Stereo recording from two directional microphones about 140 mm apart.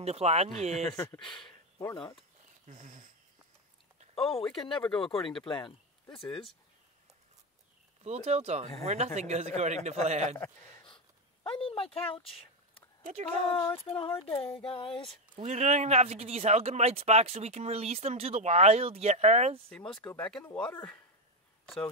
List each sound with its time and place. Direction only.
0.0 s speech: 50° right (ahead or behind)
0.9 s speech: 20° left (ahead or behind)
2.6 s dog: 60° right (ahead or behind)
4.1 s speech: 40° left (ahead or behind)
4.8 s speech: 5° left (ahead or behind)
5.5 s speech: 35° left (ahead or behind)
8.0 s speech: 50° right (ahead or behind)
11.4 s speech: 40° left (ahead or behind)
13.0 s speech: 50° right (ahead or behind)
13.8 s speech: 40° left (ahead or behind)
15.3 s speech: 55° right (ahead or behind)
19.7 s speech: 5° left (ahead or behind)